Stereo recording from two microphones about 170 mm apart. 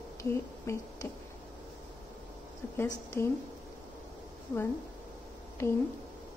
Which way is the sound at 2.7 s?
15° left (ahead or behind).